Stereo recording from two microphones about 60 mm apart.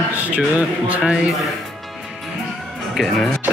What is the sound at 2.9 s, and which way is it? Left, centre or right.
Speech, centre.